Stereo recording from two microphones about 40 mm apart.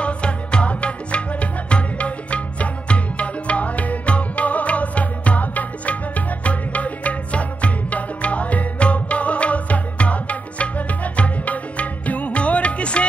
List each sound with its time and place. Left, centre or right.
0.0 s music: left